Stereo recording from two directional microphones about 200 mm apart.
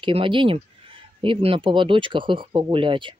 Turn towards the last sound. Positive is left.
turn(degrees=-25)  # may be behind; listen again after turning